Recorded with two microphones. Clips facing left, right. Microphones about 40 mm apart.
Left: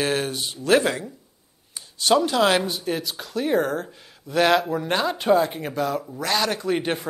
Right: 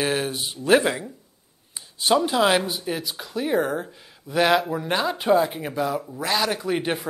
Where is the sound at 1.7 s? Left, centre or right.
Right.